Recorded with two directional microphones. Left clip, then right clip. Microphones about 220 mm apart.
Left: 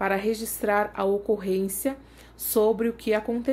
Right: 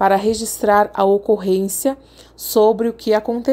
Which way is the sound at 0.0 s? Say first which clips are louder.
Right 10 dB; 30° right (ahead or behind).